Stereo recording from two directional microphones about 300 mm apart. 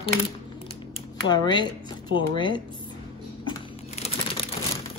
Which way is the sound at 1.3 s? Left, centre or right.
Centre.